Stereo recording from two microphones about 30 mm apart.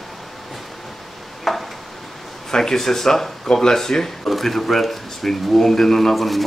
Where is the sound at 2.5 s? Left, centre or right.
Centre.